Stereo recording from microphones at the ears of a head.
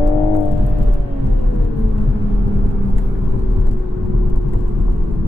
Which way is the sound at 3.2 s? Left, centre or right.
Left.